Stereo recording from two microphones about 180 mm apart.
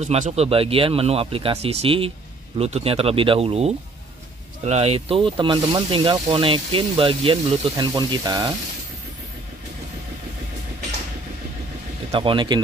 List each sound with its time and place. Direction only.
0.0 s speech: 40° right (ahead or behind); by 8.5 s 20° right (ahead or behind)
12.1 s speech: 30° right (ahead or behind)